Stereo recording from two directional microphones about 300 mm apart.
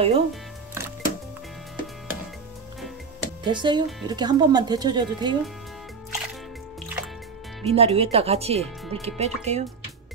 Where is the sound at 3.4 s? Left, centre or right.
Centre.